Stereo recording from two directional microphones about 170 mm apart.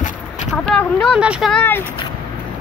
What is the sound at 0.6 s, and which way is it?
Speech, 5° left (ahead or behind).